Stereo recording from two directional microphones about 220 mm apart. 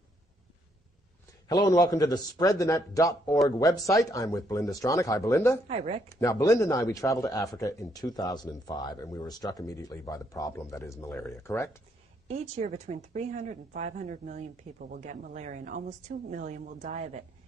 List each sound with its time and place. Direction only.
1.5 s speech: 20° left (ahead or behind)
5.7 s speech: 30° right (ahead or behind)
6.1 s speech: 15° left (ahead or behind)
12.3 s speech: 30° right (ahead or behind)